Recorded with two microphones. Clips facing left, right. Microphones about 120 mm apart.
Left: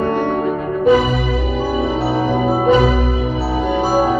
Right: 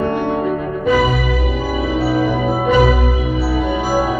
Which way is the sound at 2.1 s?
30° left (ahead or behind).